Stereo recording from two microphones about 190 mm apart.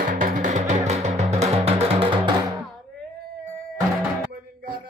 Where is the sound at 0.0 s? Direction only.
45° right (ahead or behind); by 2.3 s 30° right (ahead or behind).